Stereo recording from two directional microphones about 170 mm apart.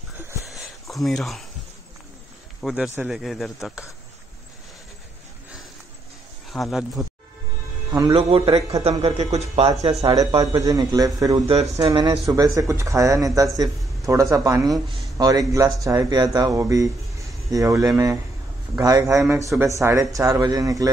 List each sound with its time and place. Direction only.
0.5 s a sound: centre (ahead or behind)
2.6 s speech: 5° right (ahead or behind)
6.5 s speech: centre (ahead or behind)
7.9 s a man's voice: 20° right (ahead or behind)
8.2 s a man's voice: 35° right (ahead or behind)
10.0 s speech: 20° right (ahead or behind)
11.3 s a man's voice: 40° right (ahead or behind)
11.8 s speech: 20° right (ahead or behind)